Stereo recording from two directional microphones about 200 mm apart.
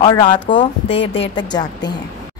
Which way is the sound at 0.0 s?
20° left (ahead or behind).